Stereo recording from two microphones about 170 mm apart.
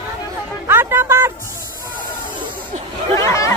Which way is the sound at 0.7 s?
15° right (ahead or behind).